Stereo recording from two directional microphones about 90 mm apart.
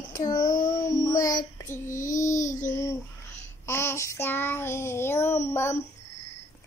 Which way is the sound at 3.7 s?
30° left (ahead or behind).